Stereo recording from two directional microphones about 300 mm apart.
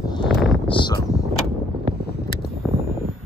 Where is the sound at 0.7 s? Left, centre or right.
Centre.